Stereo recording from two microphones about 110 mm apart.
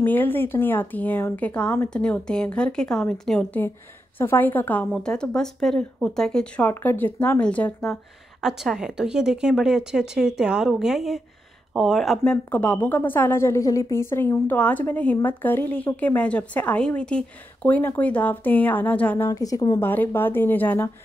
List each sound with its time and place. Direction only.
0.0 s a woman's voice: 15° left (ahead or behind)
7.8 s a woman's voice: centre (ahead or behind)
12.3 s a woman's voice: 10° left (ahead or behind)
19.3 s a woman's voice: 30° left (ahead or behind)
19.8 s speech: 20° left (ahead or behind)